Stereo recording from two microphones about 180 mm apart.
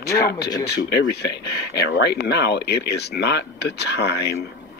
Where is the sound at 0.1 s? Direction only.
60° left (ahead or behind).